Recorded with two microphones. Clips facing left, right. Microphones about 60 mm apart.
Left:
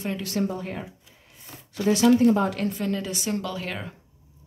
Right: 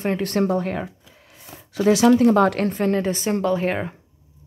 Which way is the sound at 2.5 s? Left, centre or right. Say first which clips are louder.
Right 6 dB; right.